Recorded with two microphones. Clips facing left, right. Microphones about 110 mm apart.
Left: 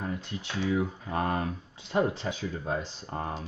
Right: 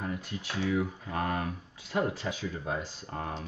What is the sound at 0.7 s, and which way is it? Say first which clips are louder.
Speech: left 2 dB; 25° left (ahead or behind).